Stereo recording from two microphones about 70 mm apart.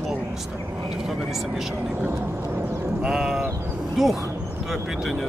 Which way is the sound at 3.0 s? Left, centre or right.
Centre.